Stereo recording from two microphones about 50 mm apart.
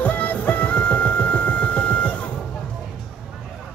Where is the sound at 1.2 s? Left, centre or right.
Left.